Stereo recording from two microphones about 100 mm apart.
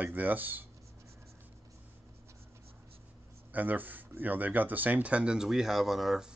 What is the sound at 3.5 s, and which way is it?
Speech, 20° right (ahead or behind).